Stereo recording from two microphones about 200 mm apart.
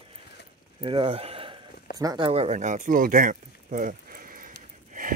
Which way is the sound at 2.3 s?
35° right (ahead or behind).